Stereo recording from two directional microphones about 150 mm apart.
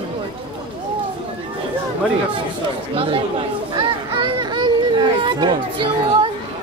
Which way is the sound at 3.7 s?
30° right (ahead or behind).